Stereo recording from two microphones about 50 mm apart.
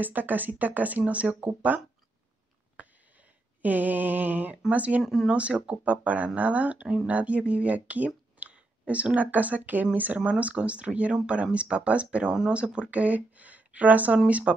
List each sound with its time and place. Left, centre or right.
0.0 s speech: right
2.8 s speech: right
5.0 s speech: centre
5.3 s speech: right